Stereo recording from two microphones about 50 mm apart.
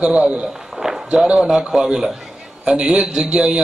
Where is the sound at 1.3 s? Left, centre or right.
Centre.